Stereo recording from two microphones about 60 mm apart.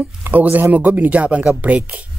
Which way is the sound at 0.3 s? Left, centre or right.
Right.